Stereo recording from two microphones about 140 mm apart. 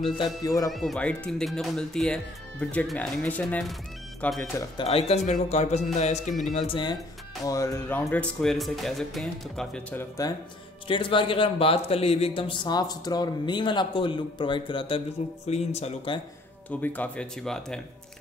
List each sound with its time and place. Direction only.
0.4 s speech: 25° left (ahead or behind)
0.7 s speech: centre (ahead or behind)
4.7 s a man's voice: 45° left (ahead or behind)
6.5 s speech: 35° left (ahead or behind)
7.4 s speech: 20° left (ahead or behind)
8.1 s speech: 5° left (ahead or behind)
9.9 s speech: 25° left (ahead or behind)
10.9 s speech: 40° left (ahead or behind)
12.6 s speech: 30° left (ahead or behind)
15.4 s a man's voice: 50° left (ahead or behind)
16.8 s speech: 10° left (ahead or behind)